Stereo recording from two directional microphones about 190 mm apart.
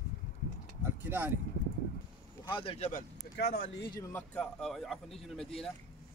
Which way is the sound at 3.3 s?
60° left (ahead or behind).